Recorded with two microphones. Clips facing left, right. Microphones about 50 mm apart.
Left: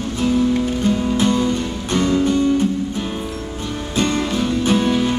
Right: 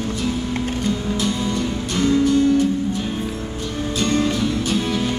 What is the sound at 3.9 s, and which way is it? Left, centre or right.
Music, left.